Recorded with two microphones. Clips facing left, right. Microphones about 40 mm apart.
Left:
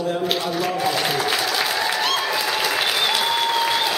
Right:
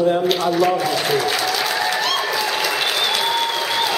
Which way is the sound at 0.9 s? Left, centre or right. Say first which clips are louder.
Right 2 dB; centre.